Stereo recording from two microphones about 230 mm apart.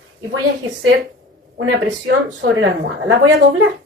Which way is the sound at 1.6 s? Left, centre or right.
Right.